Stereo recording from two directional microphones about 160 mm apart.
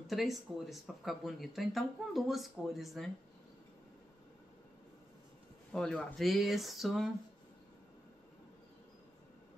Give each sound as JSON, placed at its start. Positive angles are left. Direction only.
{"t": 0.0, "sound": "speech", "side_deg": 0}
{"t": 5.7, "sound": "speech", "side_deg": 5}